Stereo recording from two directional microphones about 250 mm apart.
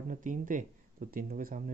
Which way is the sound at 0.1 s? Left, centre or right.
Right.